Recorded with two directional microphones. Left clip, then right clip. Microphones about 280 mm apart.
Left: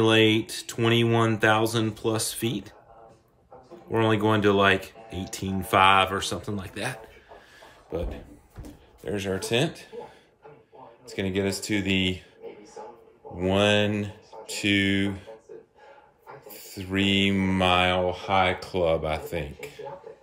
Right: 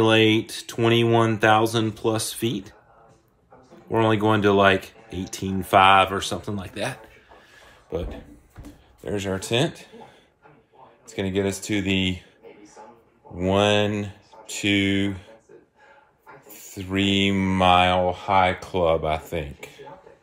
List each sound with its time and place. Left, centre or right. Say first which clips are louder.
0.0 s speech: right 2 dB; centre
3.9 s speech: right 3 dB; centre
7.6 s a sound: right 2 dB; centre
9.0 s speech: right 2 dB; right
11.1 s speech: right 2 dB; centre
13.4 s speech: right 2 dB; centre
16.5 s speech: right 2 dB; centre